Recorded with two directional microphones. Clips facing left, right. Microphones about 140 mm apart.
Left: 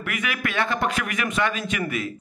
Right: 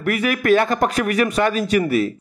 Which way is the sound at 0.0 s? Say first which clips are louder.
Right 9 dB; 40° right (ahead or behind).